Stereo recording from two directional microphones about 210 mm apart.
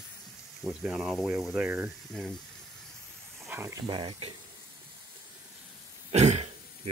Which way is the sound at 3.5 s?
15° right (ahead or behind).